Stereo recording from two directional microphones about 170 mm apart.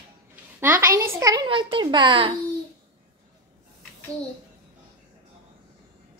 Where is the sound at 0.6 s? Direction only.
15° right (ahead or behind); by 2.3 s 30° right (ahead or behind).